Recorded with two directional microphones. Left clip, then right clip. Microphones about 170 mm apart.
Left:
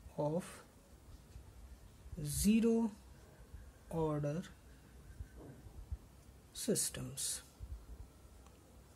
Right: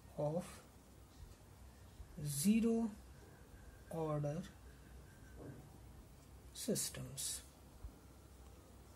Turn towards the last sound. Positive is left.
turn(degrees=55)  # may be behind; listen again after turning